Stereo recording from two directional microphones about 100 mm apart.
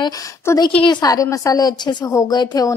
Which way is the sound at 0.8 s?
45° left (ahead or behind).